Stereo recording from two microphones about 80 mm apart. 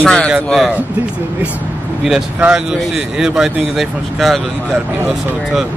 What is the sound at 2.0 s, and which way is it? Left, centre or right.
Speech, centre.